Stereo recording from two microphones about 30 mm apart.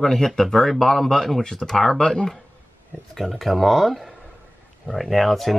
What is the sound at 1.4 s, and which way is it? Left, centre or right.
Speech, left.